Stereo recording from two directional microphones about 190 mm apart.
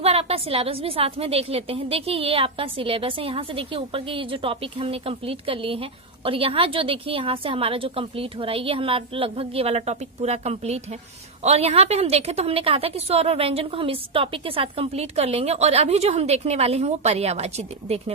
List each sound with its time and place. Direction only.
0.0 s a woman's voice: 30° right (ahead or behind)